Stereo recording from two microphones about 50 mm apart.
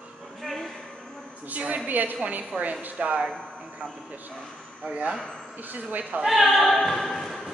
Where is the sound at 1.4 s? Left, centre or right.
Right.